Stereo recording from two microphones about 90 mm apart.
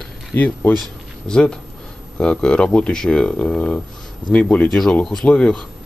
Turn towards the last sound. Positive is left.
turn(degrees=10)  # may be behind; listen again after turning